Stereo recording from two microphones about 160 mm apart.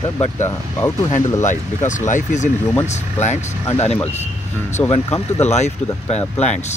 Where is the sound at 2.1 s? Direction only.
50° left (ahead or behind).